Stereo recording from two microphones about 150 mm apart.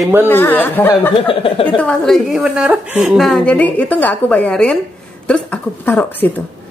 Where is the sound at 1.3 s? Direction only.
35° left (ahead or behind).